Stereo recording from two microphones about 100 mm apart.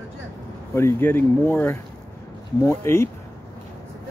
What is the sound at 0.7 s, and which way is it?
Speech, 25° left (ahead or behind).